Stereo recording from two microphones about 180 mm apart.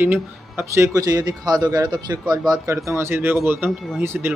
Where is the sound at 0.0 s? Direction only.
10° right (ahead or behind).